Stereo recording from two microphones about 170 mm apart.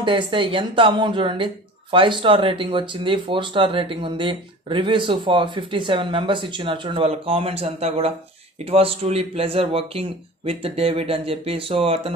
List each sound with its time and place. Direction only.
0.0 s a man's voice: 30° right (ahead or behind)